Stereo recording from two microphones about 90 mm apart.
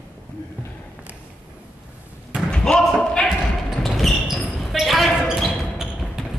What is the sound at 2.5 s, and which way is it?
Basketball bounce, 10° left (ahead or behind).